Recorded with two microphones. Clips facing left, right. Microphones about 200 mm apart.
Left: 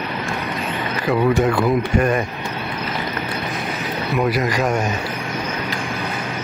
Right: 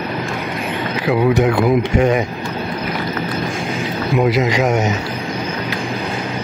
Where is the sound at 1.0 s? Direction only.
Centre (ahead or behind).